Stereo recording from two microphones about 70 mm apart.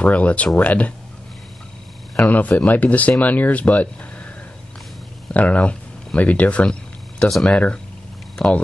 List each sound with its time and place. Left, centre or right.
0.0 s speech: centre
2.2 s speech: left
5.3 s a sound: centre
7.4 s speech: centre